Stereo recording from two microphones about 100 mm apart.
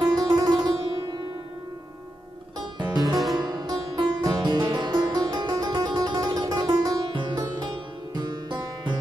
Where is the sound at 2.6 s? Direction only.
45° right (ahead or behind).